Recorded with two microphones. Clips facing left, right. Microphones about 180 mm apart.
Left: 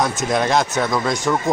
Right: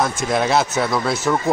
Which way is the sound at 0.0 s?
Centre (ahead or behind).